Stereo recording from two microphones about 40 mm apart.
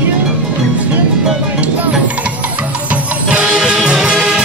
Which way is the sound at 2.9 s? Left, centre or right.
Right.